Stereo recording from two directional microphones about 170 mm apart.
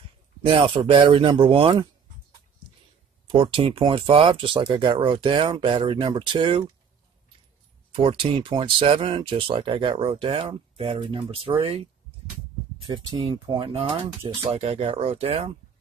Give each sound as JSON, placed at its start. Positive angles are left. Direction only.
{"t": 0.5, "sound": "speech", "side_deg": -30}
{"t": 3.3, "sound": "speech", "side_deg": -30}
{"t": 7.9, "sound": "speech", "side_deg": -30}